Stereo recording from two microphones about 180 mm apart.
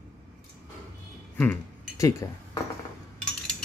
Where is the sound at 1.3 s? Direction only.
10° left (ahead or behind).